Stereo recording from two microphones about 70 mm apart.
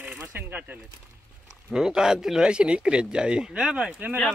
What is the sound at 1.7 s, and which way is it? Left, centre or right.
A man's voice, centre.